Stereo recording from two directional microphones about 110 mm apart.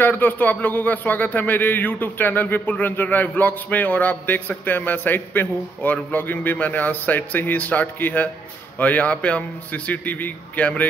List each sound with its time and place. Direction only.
0.0 s speech: 15° left (ahead or behind)